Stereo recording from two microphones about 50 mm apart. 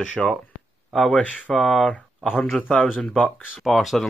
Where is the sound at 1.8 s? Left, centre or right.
Left.